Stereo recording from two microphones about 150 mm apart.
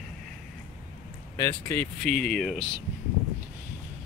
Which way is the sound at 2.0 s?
5° left (ahead or behind).